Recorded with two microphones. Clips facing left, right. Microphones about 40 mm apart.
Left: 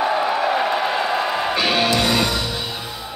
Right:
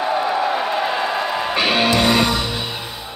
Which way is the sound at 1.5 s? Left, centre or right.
Right.